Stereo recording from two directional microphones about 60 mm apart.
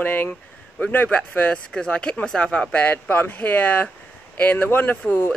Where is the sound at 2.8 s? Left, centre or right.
Left.